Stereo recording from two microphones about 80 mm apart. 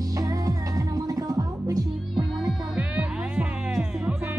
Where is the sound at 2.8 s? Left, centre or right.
Centre.